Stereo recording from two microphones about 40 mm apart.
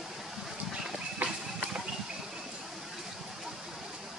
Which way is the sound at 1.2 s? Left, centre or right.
Right.